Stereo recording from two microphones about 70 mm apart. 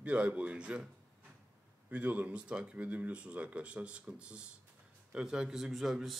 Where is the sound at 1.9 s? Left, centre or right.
Centre.